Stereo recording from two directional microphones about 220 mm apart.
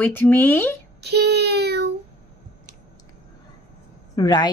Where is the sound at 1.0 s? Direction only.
50° right (ahead or behind).